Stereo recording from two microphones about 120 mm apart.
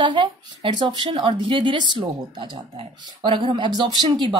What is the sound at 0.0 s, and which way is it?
Speech, 40° right (ahead or behind).